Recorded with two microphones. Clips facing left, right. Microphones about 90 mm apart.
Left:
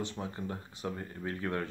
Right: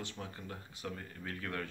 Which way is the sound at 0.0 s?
25° left (ahead or behind).